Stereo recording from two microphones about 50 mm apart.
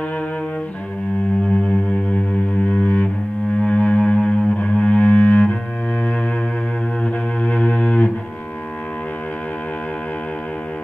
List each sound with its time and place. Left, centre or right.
2.7 s double bass: left
3.6 s music: left
7.4 s cello: left